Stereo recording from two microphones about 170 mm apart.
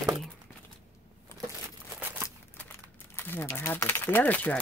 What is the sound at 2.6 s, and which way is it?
Speech, 15° left (ahead or behind).